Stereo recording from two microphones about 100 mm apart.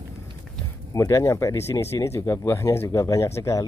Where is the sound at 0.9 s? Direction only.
30° left (ahead or behind).